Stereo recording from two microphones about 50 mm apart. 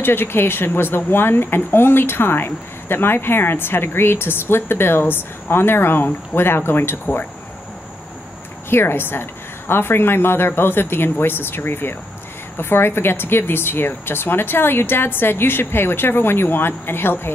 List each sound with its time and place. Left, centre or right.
0.0 s speech: left
8.6 s speech: left